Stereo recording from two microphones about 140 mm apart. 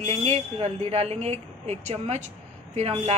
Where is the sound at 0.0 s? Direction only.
45° right (ahead or behind).